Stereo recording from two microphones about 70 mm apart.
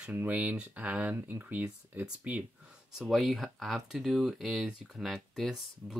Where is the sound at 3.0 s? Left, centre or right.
Centre.